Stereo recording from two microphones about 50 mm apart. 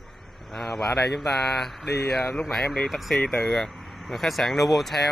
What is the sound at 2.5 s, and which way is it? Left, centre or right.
Speech, left.